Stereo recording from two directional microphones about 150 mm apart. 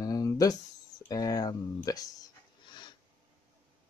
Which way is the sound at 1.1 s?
25° left (ahead or behind).